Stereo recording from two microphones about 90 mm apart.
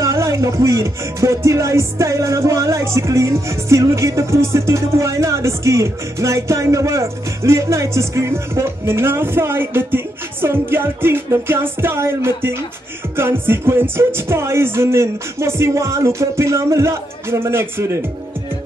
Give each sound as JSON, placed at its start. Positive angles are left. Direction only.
{"t": 0.0, "sound": "music", "side_deg": -35}